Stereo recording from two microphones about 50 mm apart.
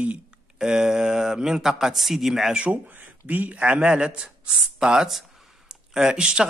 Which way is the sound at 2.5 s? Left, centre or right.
Right.